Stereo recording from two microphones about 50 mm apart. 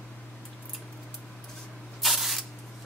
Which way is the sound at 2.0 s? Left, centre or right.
Centre.